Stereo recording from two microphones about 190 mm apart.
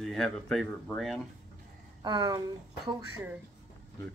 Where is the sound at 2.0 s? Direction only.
20° right (ahead or behind).